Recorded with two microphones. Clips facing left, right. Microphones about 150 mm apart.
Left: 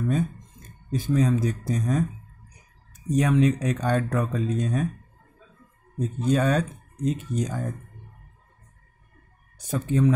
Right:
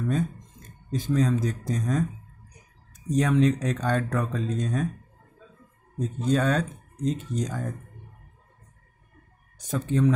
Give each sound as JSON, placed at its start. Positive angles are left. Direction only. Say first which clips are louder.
{"t": 0.9, "sound": "speech", "louder": "left 1 dB", "side_deg": 10}
{"t": 3.1, "sound": "speech", "louder": "left 1 dB", "side_deg": 10}
{"t": 5.9, "sound": "speech", "louder": "left 1 dB", "side_deg": 10}
{"t": 9.7, "sound": "speech", "louder": "left 1 dB", "side_deg": 10}